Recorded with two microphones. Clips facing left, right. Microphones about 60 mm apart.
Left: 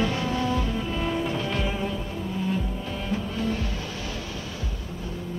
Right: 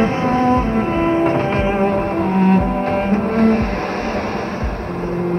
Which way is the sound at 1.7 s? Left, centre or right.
Right.